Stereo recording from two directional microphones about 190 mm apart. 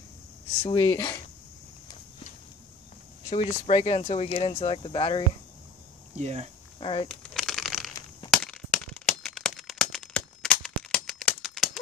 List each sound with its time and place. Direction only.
0.6 s speech: 20° left (ahead or behind)
3.3 s speech: 30° left (ahead or behind)
6.1 s speech: 35° right (ahead or behind)
6.8 s speech: 25° left (ahead or behind)
7.1 s crumpling: centre (ahead or behind)
8.3 s crack: 5° left (ahead or behind)